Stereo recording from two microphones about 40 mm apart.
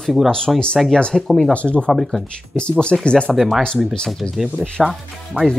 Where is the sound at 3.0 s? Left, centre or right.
Left.